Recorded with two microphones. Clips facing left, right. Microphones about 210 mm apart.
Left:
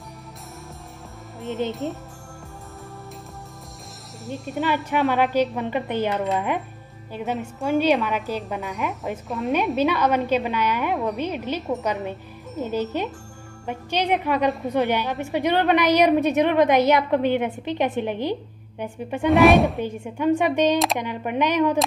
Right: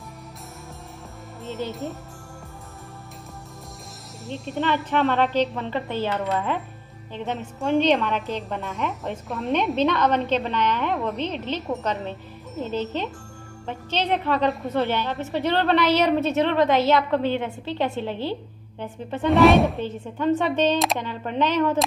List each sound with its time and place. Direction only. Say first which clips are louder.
1.4 s music: left 4 dB; 15° left (ahead or behind)
1.7 s speech: left 3 dB; centre (ahead or behind)
4.3 s speech: left 1 dB; centre (ahead or behind)
4.8 s a woman's voice: left 1 dB; 15° left (ahead or behind)
8.4 s speech: left 1 dB; centre (ahead or behind)
9.8 s a woman's voice: even; 15° left (ahead or behind)
19.2 s speech: left 1 dB; centre (ahead or behind)
19.8 s a woman's voice: left 2 dB; 10° left (ahead or behind)